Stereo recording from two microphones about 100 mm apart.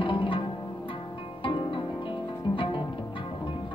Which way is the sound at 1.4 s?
55° left (ahead or behind).